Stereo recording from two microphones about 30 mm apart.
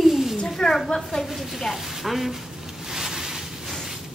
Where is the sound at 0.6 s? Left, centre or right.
Left.